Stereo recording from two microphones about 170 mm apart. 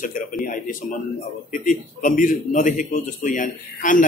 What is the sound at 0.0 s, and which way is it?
A man's voice, 50° left (ahead or behind).